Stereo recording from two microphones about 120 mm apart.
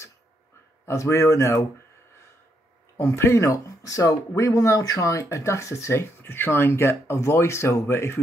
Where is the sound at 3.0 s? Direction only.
20° left (ahead or behind).